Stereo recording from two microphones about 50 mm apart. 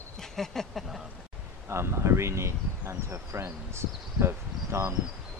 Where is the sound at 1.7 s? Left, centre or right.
Right.